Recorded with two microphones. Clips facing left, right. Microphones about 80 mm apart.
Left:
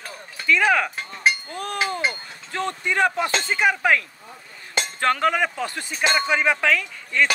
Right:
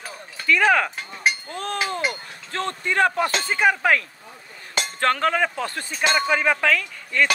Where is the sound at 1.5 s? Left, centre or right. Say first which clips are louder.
Even; centre.